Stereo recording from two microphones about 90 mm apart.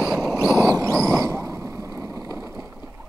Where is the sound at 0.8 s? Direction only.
30° right (ahead or behind).